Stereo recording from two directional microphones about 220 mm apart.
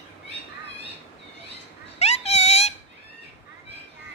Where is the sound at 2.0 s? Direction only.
30° left (ahead or behind).